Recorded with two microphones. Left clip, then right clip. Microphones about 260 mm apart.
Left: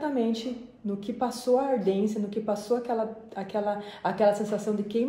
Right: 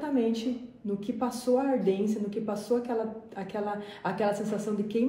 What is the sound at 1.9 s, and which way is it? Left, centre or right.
A woman's voice, left.